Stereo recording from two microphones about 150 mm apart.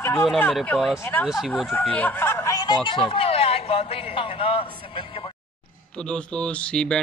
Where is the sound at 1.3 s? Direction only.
Centre (ahead or behind).